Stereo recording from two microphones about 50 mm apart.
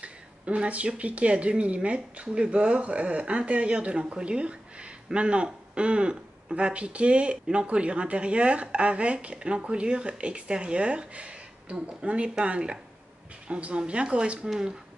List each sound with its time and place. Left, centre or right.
0.0 s speech: right